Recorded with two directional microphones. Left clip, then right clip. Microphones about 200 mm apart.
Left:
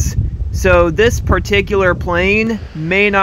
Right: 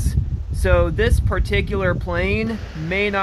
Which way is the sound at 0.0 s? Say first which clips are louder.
Left 6 dB; 15° left (ahead or behind).